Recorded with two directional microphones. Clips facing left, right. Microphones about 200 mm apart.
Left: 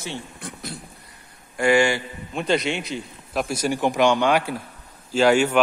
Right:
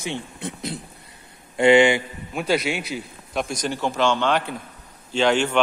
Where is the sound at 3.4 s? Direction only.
5° left (ahead or behind).